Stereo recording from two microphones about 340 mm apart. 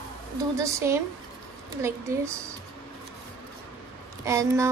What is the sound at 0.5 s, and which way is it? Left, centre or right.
Speech, centre.